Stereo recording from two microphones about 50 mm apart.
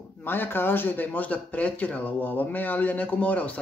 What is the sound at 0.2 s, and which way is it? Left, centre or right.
A man's voice, left.